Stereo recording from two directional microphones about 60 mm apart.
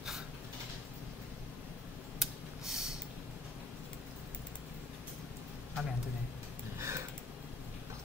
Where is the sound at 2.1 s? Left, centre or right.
Centre.